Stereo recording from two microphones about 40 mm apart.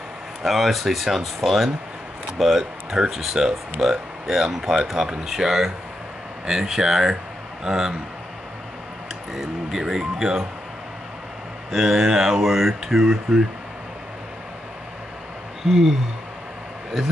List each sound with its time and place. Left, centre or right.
0.4 s speech: centre
9.3 s speech: centre
11.7 s speech: centre